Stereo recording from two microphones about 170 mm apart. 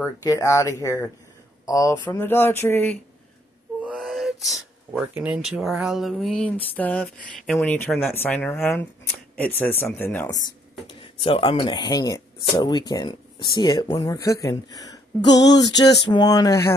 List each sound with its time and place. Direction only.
0.0 s speech: 20° left (ahead or behind)
3.8 s speech: centre (ahead or behind)
10.9 s speech: 30° left (ahead or behind)